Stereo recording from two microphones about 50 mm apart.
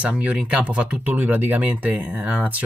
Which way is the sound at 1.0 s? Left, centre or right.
Right.